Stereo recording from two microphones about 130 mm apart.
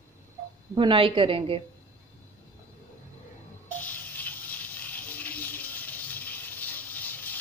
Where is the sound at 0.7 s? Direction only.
40° right (ahead or behind).